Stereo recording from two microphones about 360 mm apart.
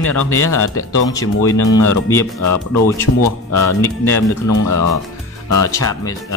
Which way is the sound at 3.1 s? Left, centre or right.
Left.